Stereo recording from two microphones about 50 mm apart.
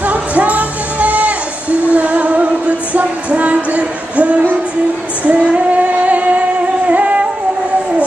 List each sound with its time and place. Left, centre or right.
0.0 s music: right
5.3 s female singing: right
6.9 s music: right